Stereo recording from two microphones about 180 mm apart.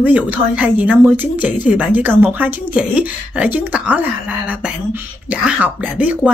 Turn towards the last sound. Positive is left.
turn(degrees=-10)  # may be behind; listen again after turning